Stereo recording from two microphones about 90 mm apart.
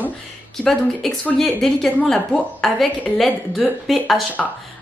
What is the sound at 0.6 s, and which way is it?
A woman's voice, 10° left (ahead or behind).